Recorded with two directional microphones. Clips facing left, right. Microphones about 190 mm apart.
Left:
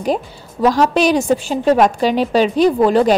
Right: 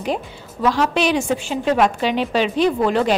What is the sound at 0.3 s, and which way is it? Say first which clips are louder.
A woman's voice: left 5 dB; 40° left (ahead or behind).